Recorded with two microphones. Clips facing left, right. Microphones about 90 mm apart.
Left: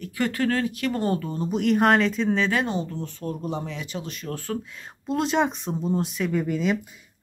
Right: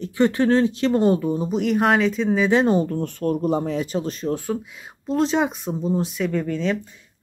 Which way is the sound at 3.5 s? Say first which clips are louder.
Right 9 dB; 40° right (ahead or behind).